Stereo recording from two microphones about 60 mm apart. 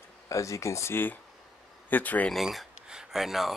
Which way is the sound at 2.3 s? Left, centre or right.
Centre.